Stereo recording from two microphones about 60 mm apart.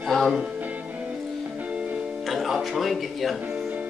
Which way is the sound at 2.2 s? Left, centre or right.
Centre.